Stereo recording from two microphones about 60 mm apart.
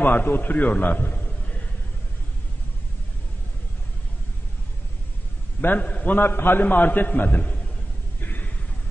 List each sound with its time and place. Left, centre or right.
0.0 s a man's voice: left
5.6 s a man's voice: left
8.2 s a sound: left